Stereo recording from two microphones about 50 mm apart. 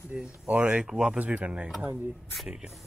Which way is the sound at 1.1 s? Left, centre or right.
Right.